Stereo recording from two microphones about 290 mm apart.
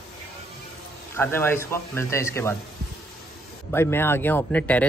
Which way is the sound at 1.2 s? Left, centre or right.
Centre.